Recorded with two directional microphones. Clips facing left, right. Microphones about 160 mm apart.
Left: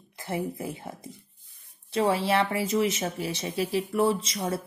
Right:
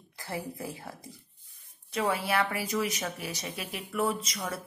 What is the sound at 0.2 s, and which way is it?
Speech, 20° left (ahead or behind).